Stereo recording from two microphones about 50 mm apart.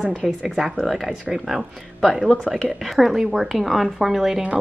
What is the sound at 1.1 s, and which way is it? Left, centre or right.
Speech, centre.